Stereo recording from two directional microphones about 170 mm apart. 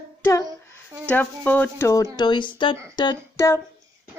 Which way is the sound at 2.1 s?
25° left (ahead or behind).